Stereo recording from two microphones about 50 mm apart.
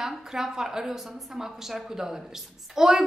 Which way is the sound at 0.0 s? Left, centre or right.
Centre.